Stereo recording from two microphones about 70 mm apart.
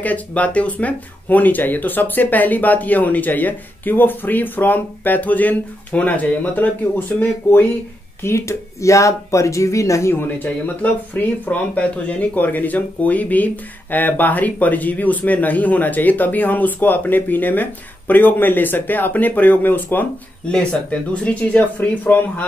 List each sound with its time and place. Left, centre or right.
0.0 s speech: left
8.2 s speech: left
10.1 s speech: left
21.1 s speech: left